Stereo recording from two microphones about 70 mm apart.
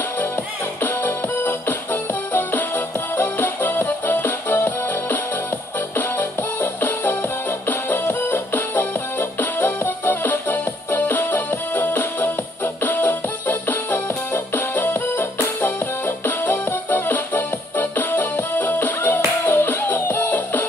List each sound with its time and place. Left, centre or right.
0.8 s music: left